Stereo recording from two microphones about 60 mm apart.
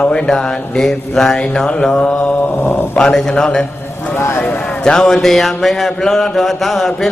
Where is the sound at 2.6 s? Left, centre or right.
Left.